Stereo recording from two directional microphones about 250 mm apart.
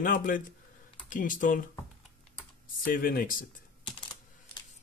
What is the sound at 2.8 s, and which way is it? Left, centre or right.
Speech, left.